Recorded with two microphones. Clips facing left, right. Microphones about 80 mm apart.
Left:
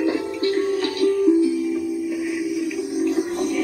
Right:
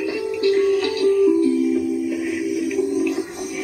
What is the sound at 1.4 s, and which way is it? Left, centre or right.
Music, centre.